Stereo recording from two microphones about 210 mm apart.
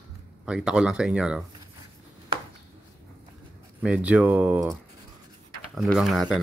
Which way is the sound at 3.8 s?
5° right (ahead or behind).